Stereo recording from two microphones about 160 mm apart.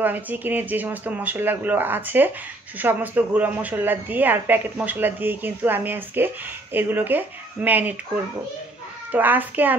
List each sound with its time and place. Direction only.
0.0 s a woman's voice: 10° right (ahead or behind)
9.1 s a woman's voice: 10° right (ahead or behind)